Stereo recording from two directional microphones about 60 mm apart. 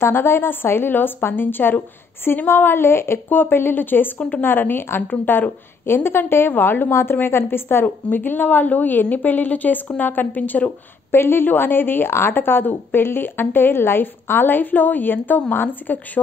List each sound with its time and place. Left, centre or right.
0.0 s a woman's voice: left
11.1 s a woman's voice: left